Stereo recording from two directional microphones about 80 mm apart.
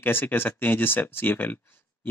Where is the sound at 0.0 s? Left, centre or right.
Left.